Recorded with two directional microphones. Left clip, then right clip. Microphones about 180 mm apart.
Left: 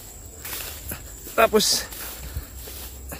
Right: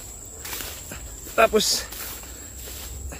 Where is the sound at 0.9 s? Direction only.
20° left (ahead or behind).